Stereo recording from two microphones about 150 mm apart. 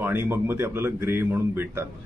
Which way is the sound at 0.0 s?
15° right (ahead or behind).